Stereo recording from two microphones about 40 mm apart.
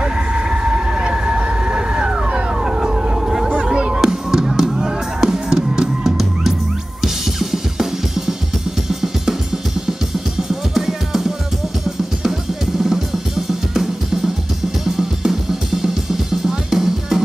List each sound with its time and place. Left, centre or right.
0.0 s vehicle: right
2.6 s vehicle: centre
3.7 s music: right; by 6.5 s centre
7.0 s drum kit: centre